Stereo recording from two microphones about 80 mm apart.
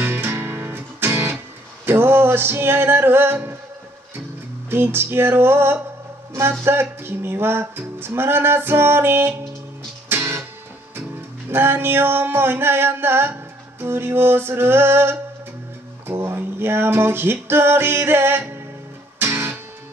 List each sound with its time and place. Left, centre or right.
0.0 s music: right
4.6 s music: right
11.5 s music: right